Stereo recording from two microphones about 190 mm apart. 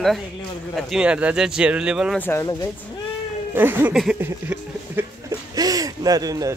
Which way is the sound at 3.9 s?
5° right (ahead or behind).